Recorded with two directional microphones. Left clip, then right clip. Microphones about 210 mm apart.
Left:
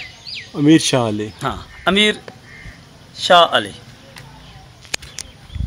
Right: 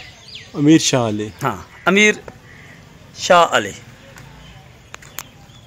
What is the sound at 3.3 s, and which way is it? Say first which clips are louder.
Speech: left 1 dB; 20° right (ahead or behind).